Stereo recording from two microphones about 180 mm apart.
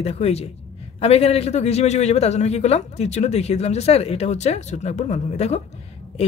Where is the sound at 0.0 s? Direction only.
35° left (ahead or behind).